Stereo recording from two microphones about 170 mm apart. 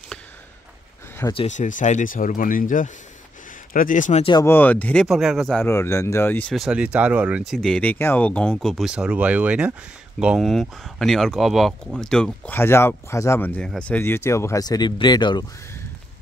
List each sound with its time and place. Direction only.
1.5 s speech: 45° left (ahead or behind)
4.2 s speech: 25° left (ahead or behind)
4.5 s speech: 10° left (ahead or behind)
5.0 s speech: centre (ahead or behind)
5.7 s speech: 15° left (ahead or behind)
6.5 s speech: 5° right (ahead or behind); by 15.4 s 25° left (ahead or behind)